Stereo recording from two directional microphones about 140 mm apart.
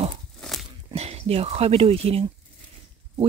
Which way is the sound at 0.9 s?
50° right (ahead or behind).